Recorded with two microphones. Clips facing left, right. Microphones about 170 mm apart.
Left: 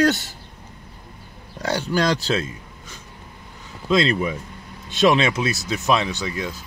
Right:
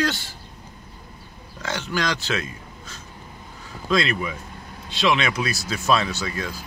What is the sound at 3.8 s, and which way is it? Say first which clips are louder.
Speech: left 3 dB; 25° left (ahead or behind).